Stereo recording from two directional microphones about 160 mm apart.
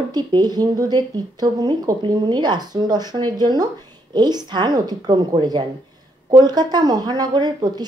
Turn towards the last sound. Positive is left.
turn(degrees=-25)  # may be behind; listen again after turning